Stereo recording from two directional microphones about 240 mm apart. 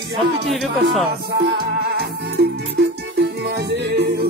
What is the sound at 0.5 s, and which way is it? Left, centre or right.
Speech, centre.